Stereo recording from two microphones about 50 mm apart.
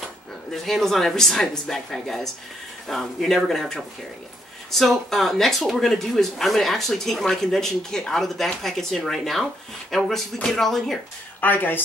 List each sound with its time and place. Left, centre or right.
0.7 s speech: centre
11.4 s speech: left